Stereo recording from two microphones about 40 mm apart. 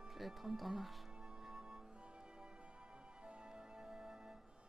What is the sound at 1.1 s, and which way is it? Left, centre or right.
Music, centre.